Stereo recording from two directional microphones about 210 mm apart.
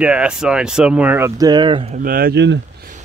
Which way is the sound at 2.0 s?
45° right (ahead or behind).